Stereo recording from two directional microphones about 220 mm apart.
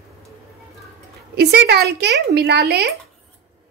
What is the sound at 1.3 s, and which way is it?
A child's voice, 45° right (ahead or behind).